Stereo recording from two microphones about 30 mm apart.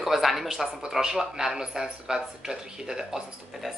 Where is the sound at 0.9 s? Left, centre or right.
Centre.